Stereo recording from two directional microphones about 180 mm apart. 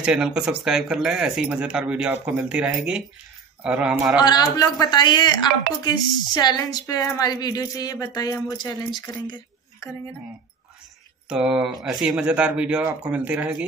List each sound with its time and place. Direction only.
0.0 s speech: 5° right (ahead or behind)
4.2 s speech: 20° left (ahead or behind)
11.2 s speech: 5° right (ahead or behind)